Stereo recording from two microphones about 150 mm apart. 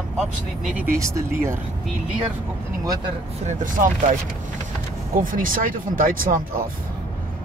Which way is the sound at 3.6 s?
60° right (ahead or behind).